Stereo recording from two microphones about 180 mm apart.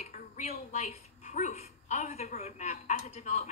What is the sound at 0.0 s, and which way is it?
Speech, 40° left (ahead or behind).